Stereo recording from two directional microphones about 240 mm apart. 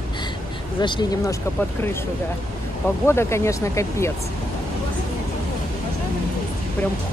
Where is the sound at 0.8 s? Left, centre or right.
Centre.